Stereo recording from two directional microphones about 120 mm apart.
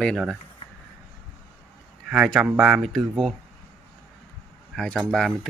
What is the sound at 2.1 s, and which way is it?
Speech, 5° right (ahead or behind).